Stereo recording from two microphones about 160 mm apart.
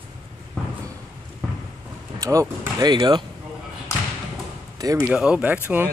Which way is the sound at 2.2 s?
20° right (ahead or behind).